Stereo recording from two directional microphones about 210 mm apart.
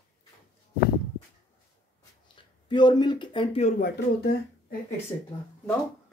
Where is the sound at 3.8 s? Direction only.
50° left (ahead or behind).